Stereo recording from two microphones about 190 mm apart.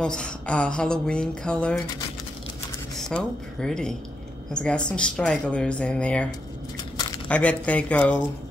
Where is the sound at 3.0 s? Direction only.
5° left (ahead or behind).